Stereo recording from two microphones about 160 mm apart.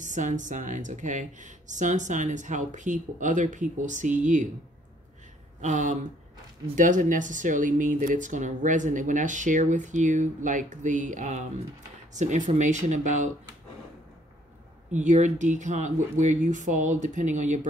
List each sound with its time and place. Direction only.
0.0 s speech: 50° right (ahead or behind)
5.6 s speech: 50° right (ahead or behind)
14.9 s speech: 50° right (ahead or behind)